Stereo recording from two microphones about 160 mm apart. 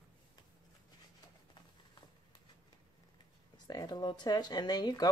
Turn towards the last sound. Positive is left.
turn(degrees=25)  # may be behind; listen again after turning